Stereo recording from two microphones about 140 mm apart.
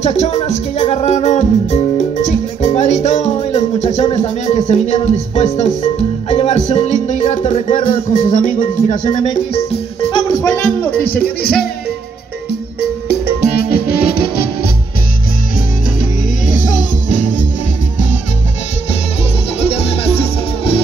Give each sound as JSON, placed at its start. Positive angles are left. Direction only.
{"t": 0.0, "sound": "music", "side_deg": 50}
{"t": 4.5, "sound": "speech", "side_deg": 50}
{"t": 8.1, "sound": "music", "side_deg": 70}
{"t": 9.1, "sound": "speech", "side_deg": 35}
{"t": 10.1, "sound": "music", "side_deg": 25}